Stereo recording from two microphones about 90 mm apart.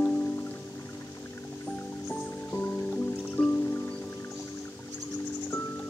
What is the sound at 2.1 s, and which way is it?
Music, 15° left (ahead or behind).